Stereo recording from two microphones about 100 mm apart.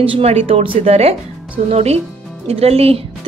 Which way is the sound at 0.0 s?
90° right.